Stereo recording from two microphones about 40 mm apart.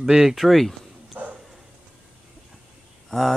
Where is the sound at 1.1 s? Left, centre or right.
Right.